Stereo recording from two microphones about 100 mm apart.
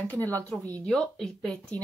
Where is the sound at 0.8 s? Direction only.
5° left (ahead or behind).